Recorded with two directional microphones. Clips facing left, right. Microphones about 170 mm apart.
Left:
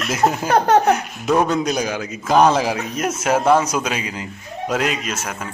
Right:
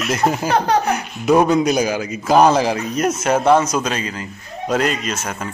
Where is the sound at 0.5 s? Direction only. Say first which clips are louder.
Left 3 dB; 50° left (ahead or behind).